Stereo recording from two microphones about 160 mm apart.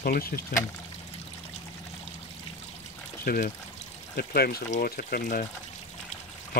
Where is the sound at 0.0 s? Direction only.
70° left (ahead or behind).